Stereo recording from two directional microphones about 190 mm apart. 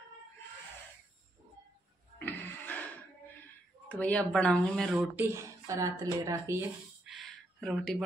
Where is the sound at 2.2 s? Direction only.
10° left (ahead or behind).